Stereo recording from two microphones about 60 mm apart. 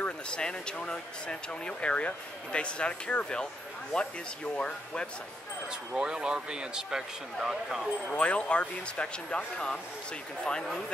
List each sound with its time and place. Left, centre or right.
0.0 s speech: centre
4.6 s speech: centre
5.9 s speech: centre
8.2 s speech: centre